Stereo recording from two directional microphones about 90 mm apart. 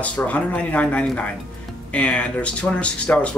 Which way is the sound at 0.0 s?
15° left (ahead or behind).